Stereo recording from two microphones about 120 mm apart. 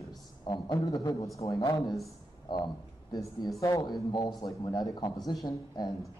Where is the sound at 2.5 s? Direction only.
40° left (ahead or behind).